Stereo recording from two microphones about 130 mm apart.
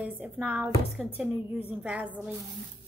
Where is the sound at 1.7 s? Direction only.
10° right (ahead or behind).